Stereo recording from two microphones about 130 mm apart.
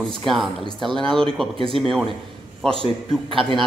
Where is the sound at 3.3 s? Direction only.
40° right (ahead or behind).